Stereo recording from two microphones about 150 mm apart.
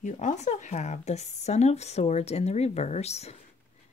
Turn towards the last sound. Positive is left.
turn(degrees=45)  # may be behind; listen again after turning